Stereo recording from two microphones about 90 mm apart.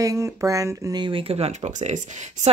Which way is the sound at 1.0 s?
70° right (ahead or behind).